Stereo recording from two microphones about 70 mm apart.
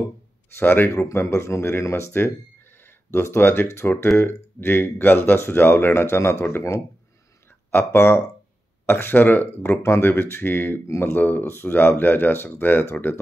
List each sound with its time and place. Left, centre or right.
0.6 s speech: left
1.1 s speech: left